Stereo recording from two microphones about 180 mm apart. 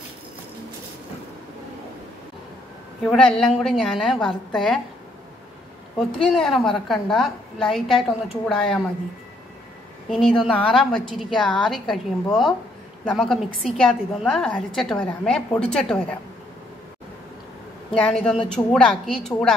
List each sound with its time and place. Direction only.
3.1 s a woman's voice: 5° left (ahead or behind)
6.2 s a woman's voice: centre (ahead or behind)
10.1 s a woman's voice: centre (ahead or behind)
17.9 s a woman's voice: 5° left (ahead or behind)